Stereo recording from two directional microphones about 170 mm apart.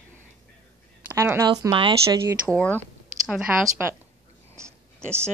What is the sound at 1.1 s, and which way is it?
Speech, 15° right (ahead or behind).